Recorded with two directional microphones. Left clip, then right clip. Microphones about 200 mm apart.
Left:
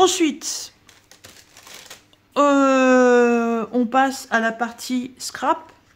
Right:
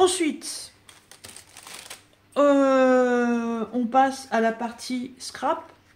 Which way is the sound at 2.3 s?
35° left (ahead or behind).